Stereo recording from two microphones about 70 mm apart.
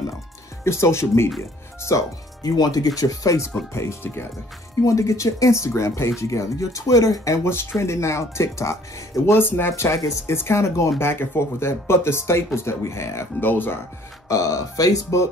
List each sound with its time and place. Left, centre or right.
0.7 s speech: left
2.5 s speech: left
3.0 s speech: left
3.7 s speech: left
4.8 s speech: left
7.8 s speech: left
9.3 s speech: left
14.3 s speech: left